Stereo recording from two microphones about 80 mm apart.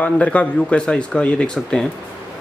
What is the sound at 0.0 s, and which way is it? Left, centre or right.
Speech, centre.